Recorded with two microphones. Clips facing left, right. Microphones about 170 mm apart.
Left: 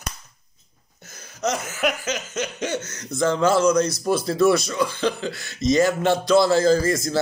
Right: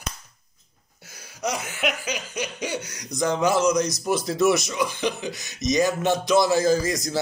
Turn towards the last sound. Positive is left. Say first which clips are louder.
# left 3 dB
turn(degrees=-15)  # may be behind; listen again after turning